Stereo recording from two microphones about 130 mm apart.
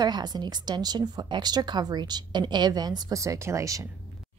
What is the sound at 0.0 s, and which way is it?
Speech, 35° right (ahead or behind).